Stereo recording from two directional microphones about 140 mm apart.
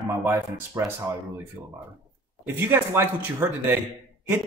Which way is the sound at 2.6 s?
15° right (ahead or behind).